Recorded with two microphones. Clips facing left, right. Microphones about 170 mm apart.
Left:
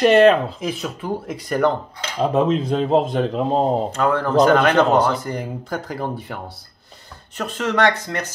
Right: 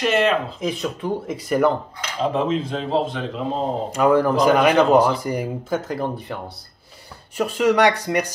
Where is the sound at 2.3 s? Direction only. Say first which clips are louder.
Left 7 dB; 45° left (ahead or behind).